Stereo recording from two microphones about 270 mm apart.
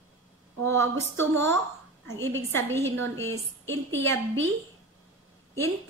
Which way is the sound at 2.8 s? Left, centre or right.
Right.